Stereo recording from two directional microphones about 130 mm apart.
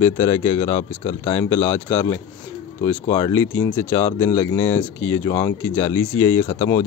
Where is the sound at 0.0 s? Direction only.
25° left (ahead or behind).